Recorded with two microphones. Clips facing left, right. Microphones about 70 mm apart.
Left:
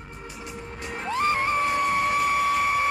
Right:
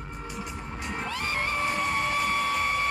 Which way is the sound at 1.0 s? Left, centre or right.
Left.